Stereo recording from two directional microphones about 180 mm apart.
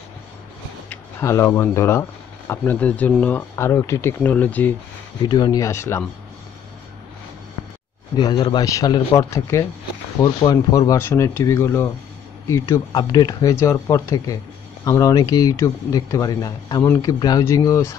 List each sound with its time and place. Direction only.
0.8 s speech: 15° left (ahead or behind)
5.2 s speech: 25° left (ahead or behind)
8.2 s speech: 25° left (ahead or behind)